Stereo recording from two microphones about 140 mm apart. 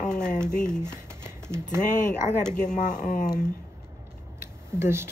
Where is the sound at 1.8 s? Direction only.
65° left (ahead or behind).